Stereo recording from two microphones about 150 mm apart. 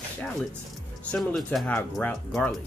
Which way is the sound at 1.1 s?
Centre (ahead or behind).